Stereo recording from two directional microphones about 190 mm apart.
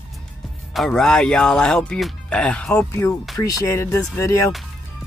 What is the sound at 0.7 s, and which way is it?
Speech, centre (ahead or behind).